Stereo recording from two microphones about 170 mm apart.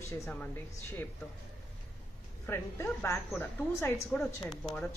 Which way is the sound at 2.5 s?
15° left (ahead or behind).